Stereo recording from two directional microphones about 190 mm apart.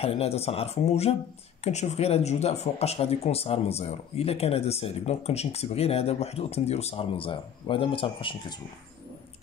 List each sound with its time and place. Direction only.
0.0 s speech: 30° left (ahead or behind)